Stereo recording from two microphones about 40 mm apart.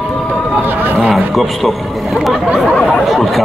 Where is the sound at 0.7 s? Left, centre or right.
Right.